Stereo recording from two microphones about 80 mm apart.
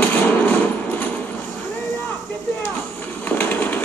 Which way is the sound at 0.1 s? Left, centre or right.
Left.